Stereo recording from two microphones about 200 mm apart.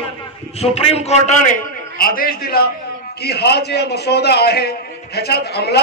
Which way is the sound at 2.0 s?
45° left (ahead or behind).